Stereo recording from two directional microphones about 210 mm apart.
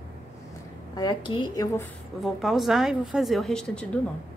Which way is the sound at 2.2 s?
Centre (ahead or behind).